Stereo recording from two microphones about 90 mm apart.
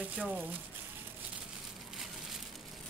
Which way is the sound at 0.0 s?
15° right (ahead or behind).